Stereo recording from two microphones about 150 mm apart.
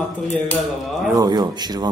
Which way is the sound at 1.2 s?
25° right (ahead or behind).